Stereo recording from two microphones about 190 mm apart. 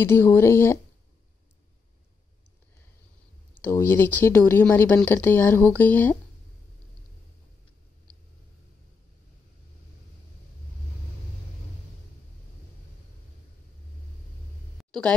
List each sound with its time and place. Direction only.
0.0 s speech: 10° left (ahead or behind)
3.6 s speech: 10° left (ahead or behind)
14.8 s a sound: 5° left (ahead or behind)